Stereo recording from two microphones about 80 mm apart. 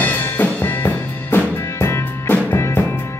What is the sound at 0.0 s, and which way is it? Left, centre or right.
Music, left.